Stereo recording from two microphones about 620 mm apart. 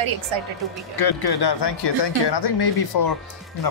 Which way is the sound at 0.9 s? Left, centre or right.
Left.